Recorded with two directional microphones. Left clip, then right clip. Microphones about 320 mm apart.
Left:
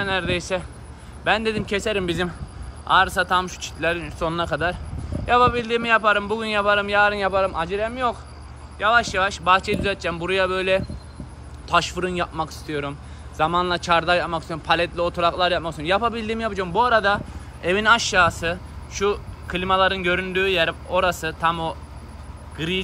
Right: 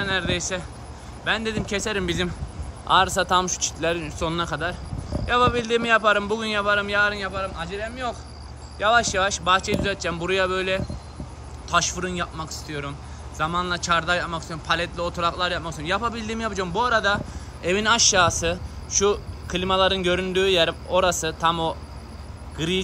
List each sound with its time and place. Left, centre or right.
0.0 s speech: centre